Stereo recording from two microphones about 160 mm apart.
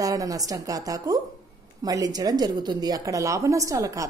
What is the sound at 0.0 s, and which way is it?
A woman's voice, 20° right (ahead or behind).